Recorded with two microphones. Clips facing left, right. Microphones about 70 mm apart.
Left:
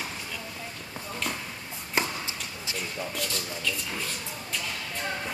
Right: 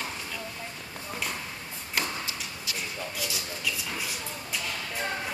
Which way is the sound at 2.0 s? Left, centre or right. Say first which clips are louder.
Left 2 dB; left.